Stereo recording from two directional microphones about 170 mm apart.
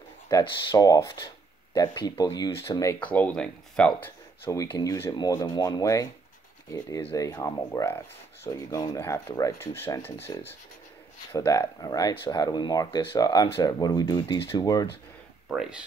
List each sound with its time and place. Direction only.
0.3 s speech: 25° left (ahead or behind)
3.0 s speech: 10° left (ahead or behind)
4.5 s speech: 20° left (ahead or behind)
11.3 s speech: 20° left (ahead or behind)
15.4 s speech: 5° right (ahead or behind)